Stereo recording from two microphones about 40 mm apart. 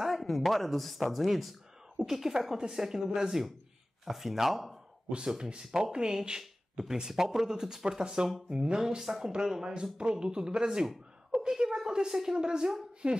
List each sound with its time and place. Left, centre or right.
0.0 s speech: centre
5.7 s speech: centre
11.3 s a sound: centre
13.0 s speech: right